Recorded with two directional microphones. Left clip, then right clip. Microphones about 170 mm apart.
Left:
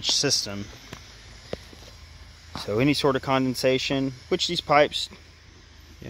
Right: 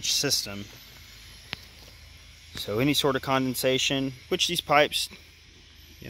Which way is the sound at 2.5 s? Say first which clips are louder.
Left 2 dB; centre (ahead or behind).